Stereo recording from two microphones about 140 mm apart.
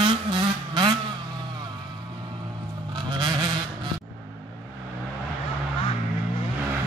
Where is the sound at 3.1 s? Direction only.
35° right (ahead or behind).